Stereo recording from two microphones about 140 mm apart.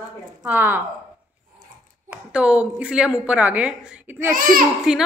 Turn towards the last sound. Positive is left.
turn(degrees=-5)  # may be behind; listen again after turning